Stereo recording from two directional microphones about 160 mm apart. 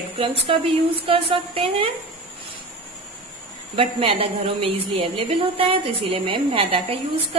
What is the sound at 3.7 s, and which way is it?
A woman's voice, 35° right (ahead or behind).